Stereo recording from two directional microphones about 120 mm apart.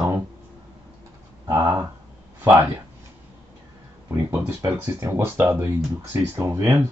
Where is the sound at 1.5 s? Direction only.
15° right (ahead or behind).